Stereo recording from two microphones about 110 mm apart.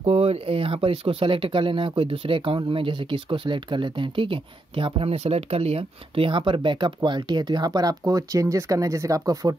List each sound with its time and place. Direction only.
0.0 s speech: 65° right (ahead or behind); by 9.6 s 30° right (ahead or behind)